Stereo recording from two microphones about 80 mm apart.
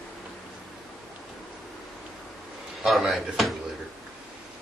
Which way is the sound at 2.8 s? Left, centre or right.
Centre.